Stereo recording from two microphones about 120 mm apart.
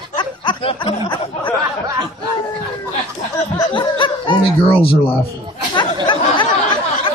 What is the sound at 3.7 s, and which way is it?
A man's voice, 45° left (ahead or behind).